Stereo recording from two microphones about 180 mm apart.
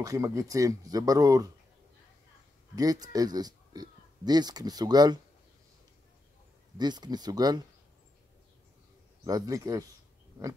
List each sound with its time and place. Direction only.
0.0 s speech: 20° right (ahead or behind)
2.7 s speech: 20° right (ahead or behind)
6.8 s speech: 25° right (ahead or behind)
9.2 s speech: 20° right (ahead or behind)